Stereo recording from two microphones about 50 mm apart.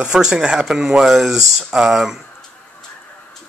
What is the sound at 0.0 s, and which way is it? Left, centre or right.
Speech, centre.